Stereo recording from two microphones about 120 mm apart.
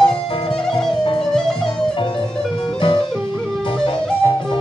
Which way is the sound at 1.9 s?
45° left (ahead or behind).